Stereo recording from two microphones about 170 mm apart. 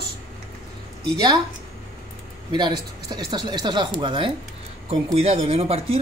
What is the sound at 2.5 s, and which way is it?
Speech, 25° right (ahead or behind).